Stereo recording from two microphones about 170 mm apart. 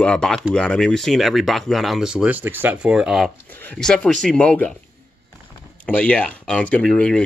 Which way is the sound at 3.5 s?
10° left (ahead or behind).